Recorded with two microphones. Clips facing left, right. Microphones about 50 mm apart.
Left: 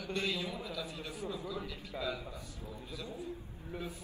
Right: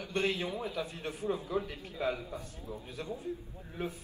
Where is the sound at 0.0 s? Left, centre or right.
Right.